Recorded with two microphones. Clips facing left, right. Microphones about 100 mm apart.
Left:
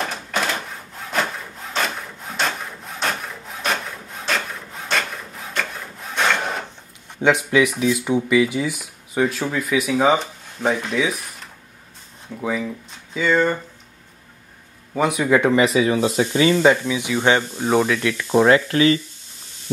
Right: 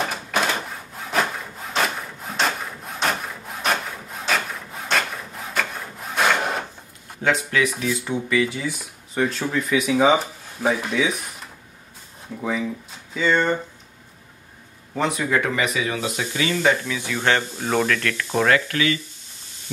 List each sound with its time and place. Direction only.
0.0 s a sound: 5° right (ahead or behind)
1.7 s wood: 5° right (ahead or behind)
5.6 s wood: 5° right (ahead or behind)
7.2 s speech: 20° left (ahead or behind); by 13.6 s centre (ahead or behind)
15.0 s speech: 10° left (ahead or behind)
15.4 s speech: 30° left (ahead or behind)
16.8 s speech: 15° left (ahead or behind); by 18.9 s 30° left (ahead or behind)